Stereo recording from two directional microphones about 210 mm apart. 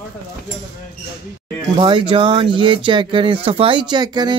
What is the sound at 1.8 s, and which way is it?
Speech, 25° right (ahead or behind).